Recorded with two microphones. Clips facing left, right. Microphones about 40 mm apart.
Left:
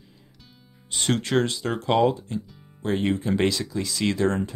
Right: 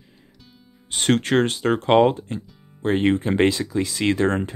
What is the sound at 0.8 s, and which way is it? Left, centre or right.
Speech, right.